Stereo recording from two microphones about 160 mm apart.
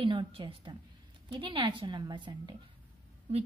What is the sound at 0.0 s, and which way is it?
A woman's voice, 30° right (ahead or behind).